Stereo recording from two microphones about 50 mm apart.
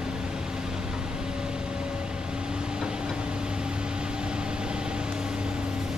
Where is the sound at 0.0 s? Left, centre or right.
Centre.